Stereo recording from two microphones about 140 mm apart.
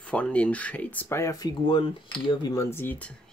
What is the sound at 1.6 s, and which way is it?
Speech, 40° left (ahead or behind).